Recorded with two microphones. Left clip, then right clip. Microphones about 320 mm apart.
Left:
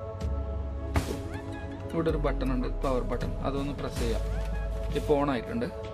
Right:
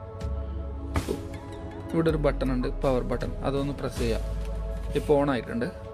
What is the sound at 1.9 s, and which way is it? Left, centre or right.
Speech, centre.